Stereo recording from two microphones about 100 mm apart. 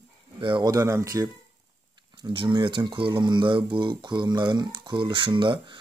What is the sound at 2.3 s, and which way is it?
Speech, 50° right (ahead or behind).